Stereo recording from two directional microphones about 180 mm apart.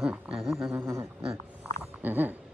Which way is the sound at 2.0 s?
10° right (ahead or behind).